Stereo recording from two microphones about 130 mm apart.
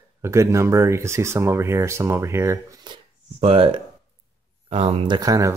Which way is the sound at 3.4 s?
45° right (ahead or behind).